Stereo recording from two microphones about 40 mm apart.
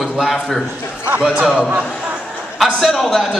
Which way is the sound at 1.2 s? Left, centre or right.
Right.